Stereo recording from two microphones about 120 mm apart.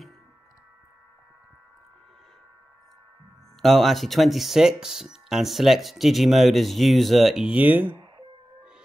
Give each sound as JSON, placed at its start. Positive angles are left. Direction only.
{"t": 3.6, "sound": "speech", "side_deg": 0}
{"t": 7.8, "sound": "speech", "side_deg": -40}